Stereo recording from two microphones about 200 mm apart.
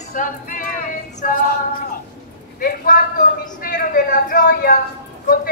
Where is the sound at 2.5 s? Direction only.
45° left (ahead or behind).